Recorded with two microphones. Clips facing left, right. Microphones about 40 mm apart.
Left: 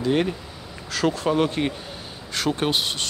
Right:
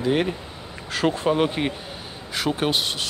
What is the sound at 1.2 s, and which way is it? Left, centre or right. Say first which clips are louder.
A man's voice: even; centre.